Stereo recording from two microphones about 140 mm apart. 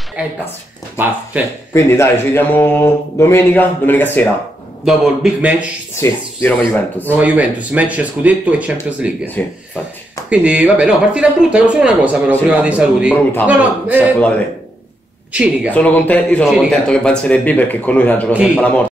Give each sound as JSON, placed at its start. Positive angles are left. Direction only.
{"t": 0.2, "sound": "speech", "side_deg": -10}
{"t": 1.7, "sound": "speech", "side_deg": 20}
{"t": 4.8, "sound": "a man's voice", "side_deg": -5}
{"t": 5.9, "sound": "speech", "side_deg": 20}
{"t": 7.2, "sound": "speech", "side_deg": -10}
{"t": 10.3, "sound": "speech", "side_deg": -10}
{"t": 13.1, "sound": "speech", "side_deg": 15}
{"t": 13.5, "sound": "speech", "side_deg": -10}
{"t": 15.3, "sound": "speech", "side_deg": -10}
{"t": 15.7, "sound": "speech", "side_deg": 10}